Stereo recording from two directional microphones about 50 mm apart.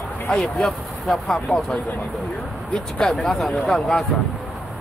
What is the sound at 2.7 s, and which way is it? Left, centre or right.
Speech, centre.